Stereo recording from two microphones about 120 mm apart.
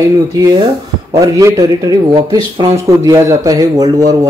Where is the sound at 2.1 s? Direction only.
40° right (ahead or behind).